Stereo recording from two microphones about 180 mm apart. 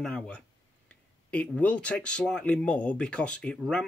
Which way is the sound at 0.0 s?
5° left (ahead or behind).